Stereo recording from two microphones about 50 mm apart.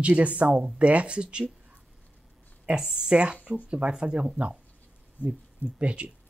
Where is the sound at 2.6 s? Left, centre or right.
Centre.